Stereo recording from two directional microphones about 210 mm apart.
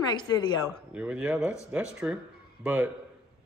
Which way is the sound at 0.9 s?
5° right (ahead or behind).